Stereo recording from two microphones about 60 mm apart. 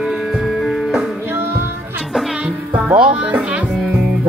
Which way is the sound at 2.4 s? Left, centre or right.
Right.